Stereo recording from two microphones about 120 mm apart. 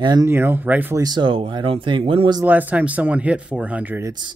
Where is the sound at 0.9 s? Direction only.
35° right (ahead or behind).